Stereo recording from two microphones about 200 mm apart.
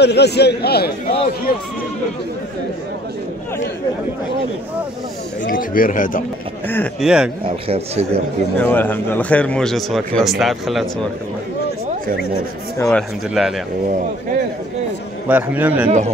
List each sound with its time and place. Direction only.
0.0 s a man's voice: 55° left (ahead or behind)
5.5 s a man's voice: 45° left (ahead or behind)
6.7 s speech: 10° left (ahead or behind)
7.6 s speech: 30° right (ahead or behind)
8.5 s a man's voice: 10° left (ahead or behind)
12.8 s a man's voice: centre (ahead or behind)
15.2 s a man's voice: 10° right (ahead or behind)